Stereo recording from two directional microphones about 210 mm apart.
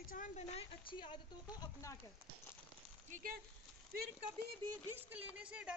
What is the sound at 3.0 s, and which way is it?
Speech, 40° right (ahead or behind).